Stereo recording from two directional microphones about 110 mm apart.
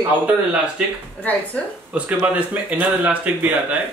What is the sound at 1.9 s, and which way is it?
Speech, 10° right (ahead or behind).